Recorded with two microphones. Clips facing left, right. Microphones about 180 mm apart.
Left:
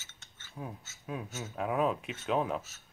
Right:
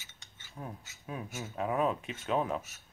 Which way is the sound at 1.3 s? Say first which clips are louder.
Even; 10° right (ahead or behind).